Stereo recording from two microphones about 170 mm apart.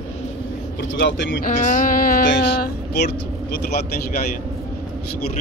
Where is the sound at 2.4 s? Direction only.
85° left.